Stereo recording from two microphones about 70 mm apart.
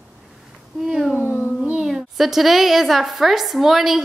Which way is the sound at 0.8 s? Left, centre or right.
Centre.